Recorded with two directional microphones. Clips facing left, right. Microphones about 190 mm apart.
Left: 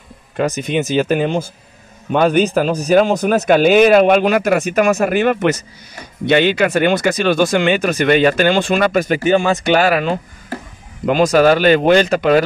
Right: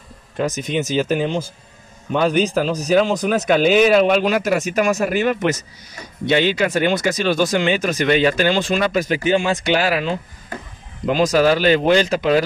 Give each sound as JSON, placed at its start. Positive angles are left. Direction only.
{"t": 0.4, "sound": "speech", "side_deg": 60}